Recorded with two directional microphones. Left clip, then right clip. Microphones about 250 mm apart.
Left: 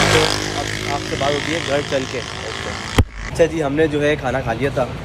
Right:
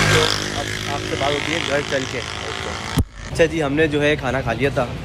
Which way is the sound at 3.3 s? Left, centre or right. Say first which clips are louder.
Left 1 dB; centre.